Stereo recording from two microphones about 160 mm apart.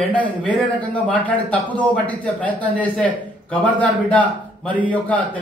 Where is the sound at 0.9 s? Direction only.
10° left (ahead or behind).